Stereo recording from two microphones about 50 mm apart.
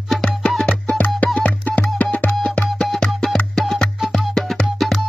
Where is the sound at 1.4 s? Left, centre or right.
Left.